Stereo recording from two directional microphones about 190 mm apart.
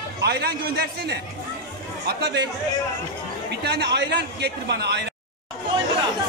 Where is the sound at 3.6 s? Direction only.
60° right (ahead or behind).